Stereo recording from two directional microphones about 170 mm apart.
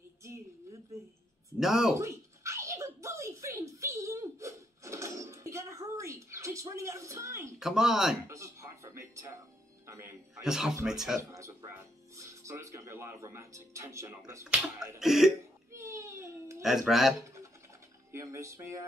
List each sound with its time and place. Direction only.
1.6 s speech: centre (ahead or behind)
2.0 s a sound: 15° right (ahead or behind)
7.5 s speech: 5° right (ahead or behind)
8.3 s music: 15° right (ahead or behind)
10.3 s speech: 5° right (ahead or behind)
12.2 s music: 15° right (ahead or behind)
15.0 s cough: centre (ahead or behind)
15.7 s baby cry: 15° right (ahead or behind)
16.6 s speech: centre (ahead or behind)
18.1 s music: 15° right (ahead or behind)